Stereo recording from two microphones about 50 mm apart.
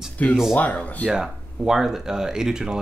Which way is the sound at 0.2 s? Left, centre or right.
Left.